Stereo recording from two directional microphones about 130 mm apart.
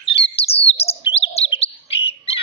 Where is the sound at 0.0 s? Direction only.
45° left (ahead or behind).